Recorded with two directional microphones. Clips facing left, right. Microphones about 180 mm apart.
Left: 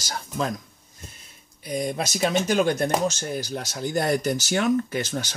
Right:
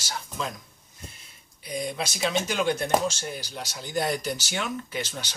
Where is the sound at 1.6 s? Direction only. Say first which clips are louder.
Left 4 dB; 45° left (ahead or behind).